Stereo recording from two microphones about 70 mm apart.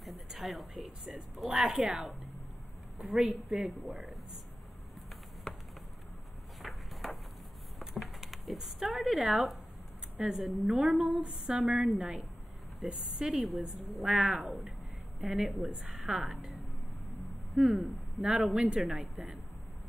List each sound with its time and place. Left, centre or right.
0.0 s a woman's voice: centre
5.5 s a sound: centre
7.8 s a woman's voice: centre
17.1 s vehicle: centre
18.3 s a woman's voice: centre